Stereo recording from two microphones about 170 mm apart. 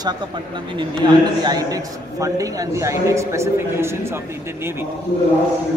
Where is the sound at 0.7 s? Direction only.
25° right (ahead or behind).